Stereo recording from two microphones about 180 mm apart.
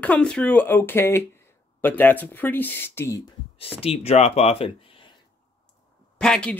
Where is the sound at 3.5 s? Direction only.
30° left (ahead or behind).